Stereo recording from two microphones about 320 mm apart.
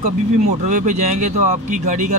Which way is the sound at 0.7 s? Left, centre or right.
Right.